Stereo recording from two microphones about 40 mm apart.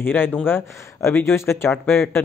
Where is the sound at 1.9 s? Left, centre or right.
Left.